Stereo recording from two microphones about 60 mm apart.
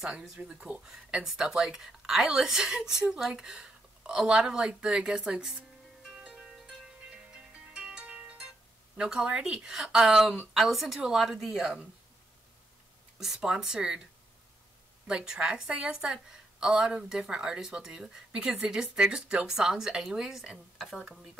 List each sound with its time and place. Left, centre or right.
0.4 s a woman's voice: centre
6.1 s music: right
7.7 s music: centre
9.9 s a woman's voice: centre
13.2 s a woman's voice: centre
15.0 s a woman's voice: centre